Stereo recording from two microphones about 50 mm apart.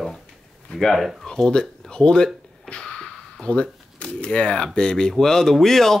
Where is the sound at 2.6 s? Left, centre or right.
Centre.